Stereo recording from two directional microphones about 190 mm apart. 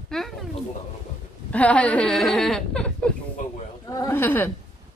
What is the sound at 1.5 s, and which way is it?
Speech, 5° left (ahead or behind).